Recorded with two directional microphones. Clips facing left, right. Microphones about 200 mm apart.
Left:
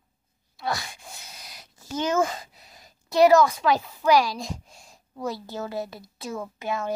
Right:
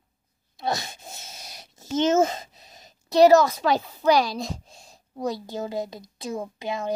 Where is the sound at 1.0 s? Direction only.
25° right (ahead or behind).